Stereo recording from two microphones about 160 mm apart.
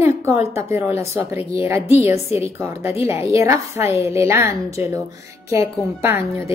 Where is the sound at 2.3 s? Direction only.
40° left (ahead or behind).